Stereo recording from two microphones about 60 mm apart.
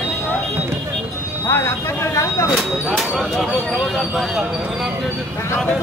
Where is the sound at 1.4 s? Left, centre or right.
Left.